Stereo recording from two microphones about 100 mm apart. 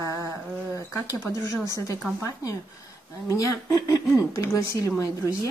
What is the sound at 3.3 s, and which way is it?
Speech, 35° left (ahead or behind).